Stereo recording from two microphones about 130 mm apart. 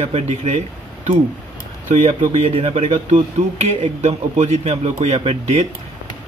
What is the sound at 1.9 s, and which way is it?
Speech, 60° right (ahead or behind).